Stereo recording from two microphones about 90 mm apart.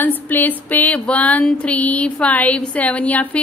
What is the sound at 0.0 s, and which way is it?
A woman's voice, 20° left (ahead or behind).